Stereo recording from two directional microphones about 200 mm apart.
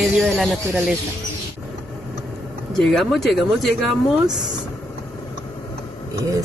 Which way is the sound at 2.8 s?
Centre (ahead or behind).